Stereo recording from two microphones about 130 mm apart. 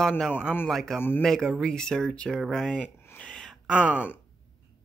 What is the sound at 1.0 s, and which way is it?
Speech, 15° left (ahead or behind).